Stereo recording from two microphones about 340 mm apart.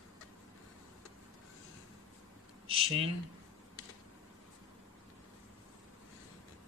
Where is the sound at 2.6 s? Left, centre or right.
Centre.